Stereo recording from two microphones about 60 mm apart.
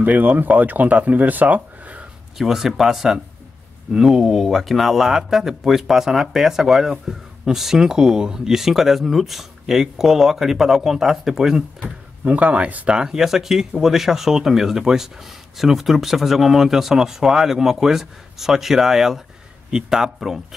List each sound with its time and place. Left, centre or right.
0.0 s speech: right
2.3 s speech: centre
11.8 s speech: right; by 20.4 s centre